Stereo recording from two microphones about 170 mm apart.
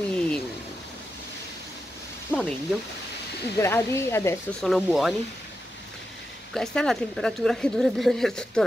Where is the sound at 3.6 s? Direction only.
15° left (ahead or behind).